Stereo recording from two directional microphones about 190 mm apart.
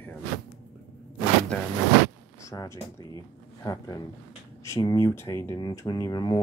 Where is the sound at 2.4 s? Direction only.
15° left (ahead or behind).